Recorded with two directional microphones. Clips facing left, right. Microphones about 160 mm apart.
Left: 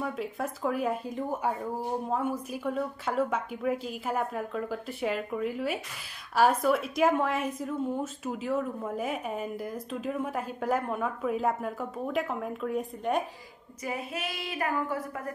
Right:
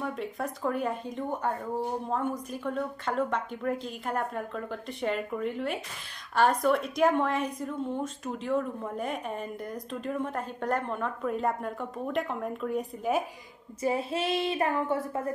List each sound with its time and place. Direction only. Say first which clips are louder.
0.0 s a woman's voice: left 1 dB; centre (ahead or behind)
13.8 s speech: right 6 dB; 30° right (ahead or behind)